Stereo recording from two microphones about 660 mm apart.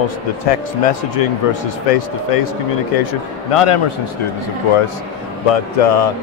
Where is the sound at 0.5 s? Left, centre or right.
Left.